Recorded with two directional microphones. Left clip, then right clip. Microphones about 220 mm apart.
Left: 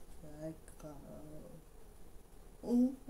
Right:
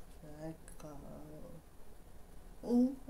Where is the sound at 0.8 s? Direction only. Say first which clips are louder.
Even; centre (ahead or behind).